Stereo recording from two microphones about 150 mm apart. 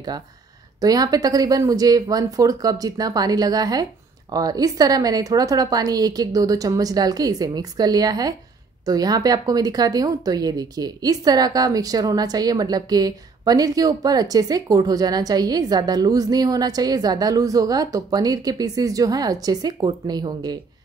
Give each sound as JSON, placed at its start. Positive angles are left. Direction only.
{"t": 0.7, "sound": "speech", "side_deg": -25}